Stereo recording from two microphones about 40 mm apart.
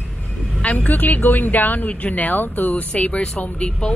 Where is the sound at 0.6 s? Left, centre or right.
Left.